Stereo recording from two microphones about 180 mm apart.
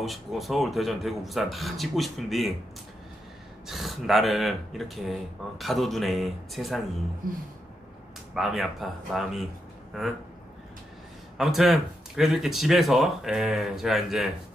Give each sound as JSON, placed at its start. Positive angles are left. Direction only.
{"t": 0.0, "sound": "speech", "side_deg": 0}
{"t": 3.6, "sound": "speech", "side_deg": 0}
{"t": 7.2, "sound": "speech", "side_deg": -50}
{"t": 8.4, "sound": "speech", "side_deg": 0}
{"t": 11.3, "sound": "speech", "side_deg": 0}